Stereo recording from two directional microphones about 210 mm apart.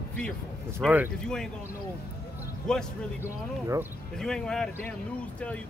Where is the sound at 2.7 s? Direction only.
5° left (ahead or behind).